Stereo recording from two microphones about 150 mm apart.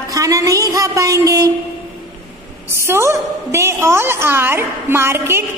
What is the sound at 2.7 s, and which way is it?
A woman's voice, 15° right (ahead or behind).